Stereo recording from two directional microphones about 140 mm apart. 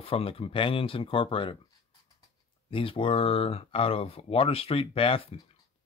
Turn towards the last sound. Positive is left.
turn(degrees=40)  # may be behind; listen again after turning